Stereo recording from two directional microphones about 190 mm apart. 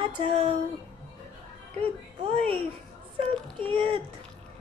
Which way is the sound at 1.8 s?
30° right (ahead or behind).